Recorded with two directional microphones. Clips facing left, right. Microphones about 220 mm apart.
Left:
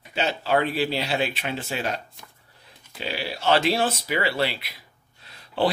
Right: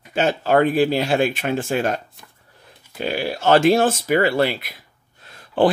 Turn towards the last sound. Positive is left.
turn(degrees=-50)  # may be behind; listen again after turning